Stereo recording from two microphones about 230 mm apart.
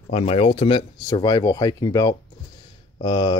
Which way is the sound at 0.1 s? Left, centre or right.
Left.